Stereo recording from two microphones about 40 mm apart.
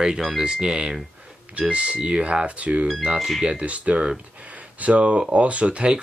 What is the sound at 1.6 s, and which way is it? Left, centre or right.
Speech, right.